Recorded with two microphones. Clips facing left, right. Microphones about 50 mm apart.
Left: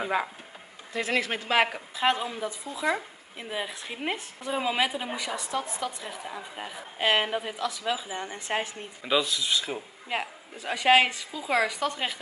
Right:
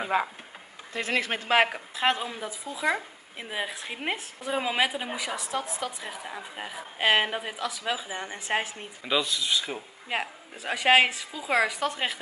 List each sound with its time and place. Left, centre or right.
0.0 s speech: centre
0.9 s speech: right
2.0 s speech: centre
9.0 s speech: centre
10.0 s speech: centre